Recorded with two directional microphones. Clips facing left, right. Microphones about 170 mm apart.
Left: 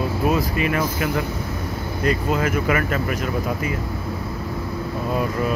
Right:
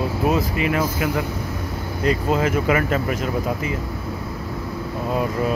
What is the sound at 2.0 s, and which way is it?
Speech, 25° right (ahead or behind).